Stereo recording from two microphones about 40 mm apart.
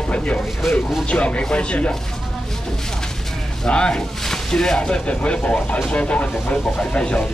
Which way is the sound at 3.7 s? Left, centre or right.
Centre.